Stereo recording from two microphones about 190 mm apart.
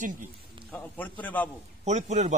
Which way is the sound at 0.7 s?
10° left (ahead or behind).